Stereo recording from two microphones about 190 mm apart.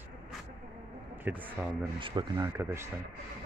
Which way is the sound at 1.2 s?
10° right (ahead or behind).